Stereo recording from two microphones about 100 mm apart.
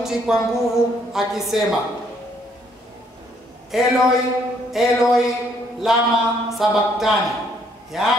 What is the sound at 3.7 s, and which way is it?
A woman's voice, 5° right (ahead or behind).